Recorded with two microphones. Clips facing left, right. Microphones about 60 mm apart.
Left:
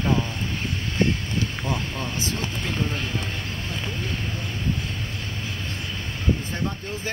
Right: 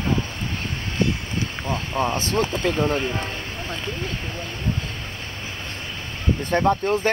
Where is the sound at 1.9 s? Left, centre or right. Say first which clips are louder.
Right 8 dB; right.